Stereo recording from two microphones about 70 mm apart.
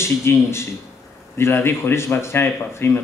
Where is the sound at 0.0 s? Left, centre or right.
Left.